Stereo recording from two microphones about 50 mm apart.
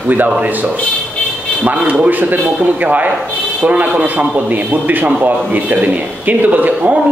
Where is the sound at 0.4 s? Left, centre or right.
Right.